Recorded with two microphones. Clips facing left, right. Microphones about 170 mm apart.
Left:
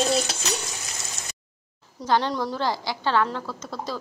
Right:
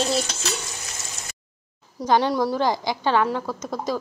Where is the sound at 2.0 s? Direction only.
10° right (ahead or behind).